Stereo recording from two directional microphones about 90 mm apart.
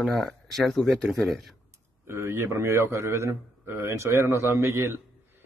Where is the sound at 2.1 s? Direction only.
30° right (ahead or behind).